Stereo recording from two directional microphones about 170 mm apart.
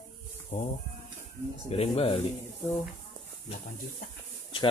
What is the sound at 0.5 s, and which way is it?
Speech, 40° left (ahead or behind).